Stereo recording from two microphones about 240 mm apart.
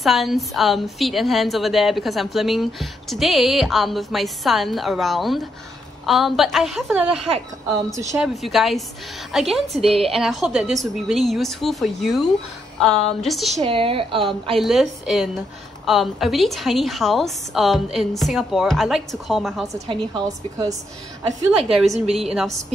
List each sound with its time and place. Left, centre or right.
0.0 s a woman's voice: centre
7.7 s a woman's voice: centre
8.4 s a woman's voice: centre
13.7 s a woman's voice: right
14.6 s a woman's voice: centre
19.7 s a woman's voice: centre
21.7 s a woman's voice: centre